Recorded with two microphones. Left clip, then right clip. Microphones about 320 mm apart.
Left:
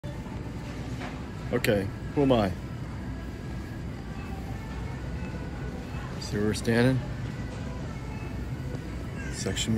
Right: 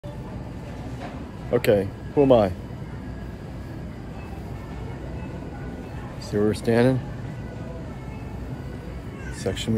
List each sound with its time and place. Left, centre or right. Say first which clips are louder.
1.5 s speech: right 7 dB; centre
6.3 s speech: right 6 dB; centre
9.4 s speech: right 4 dB; centre